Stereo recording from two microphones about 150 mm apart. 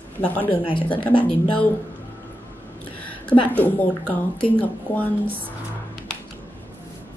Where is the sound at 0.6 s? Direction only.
35° left (ahead or behind).